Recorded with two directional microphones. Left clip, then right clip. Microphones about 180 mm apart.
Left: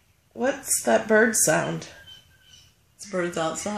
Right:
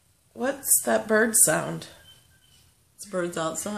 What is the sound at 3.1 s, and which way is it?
Speech, 15° right (ahead or behind).